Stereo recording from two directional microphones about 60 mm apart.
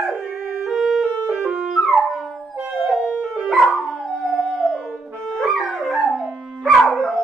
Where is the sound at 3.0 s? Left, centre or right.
Right.